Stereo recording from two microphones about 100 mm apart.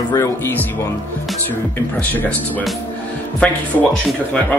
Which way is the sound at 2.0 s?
15° left (ahead or behind).